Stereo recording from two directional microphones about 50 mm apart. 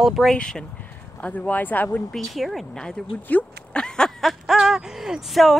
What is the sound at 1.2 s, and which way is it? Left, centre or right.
Speech, left.